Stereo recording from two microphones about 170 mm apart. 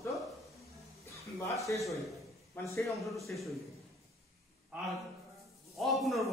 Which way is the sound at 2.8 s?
Centre (ahead or behind).